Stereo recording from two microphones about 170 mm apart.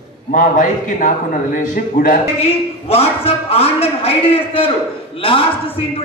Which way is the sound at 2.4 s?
35° left (ahead or behind).